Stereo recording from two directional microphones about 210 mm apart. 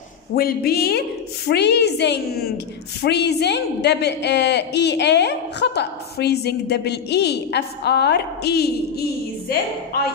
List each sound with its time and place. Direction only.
0.3 s a woman's voice: 45° left (ahead or behind)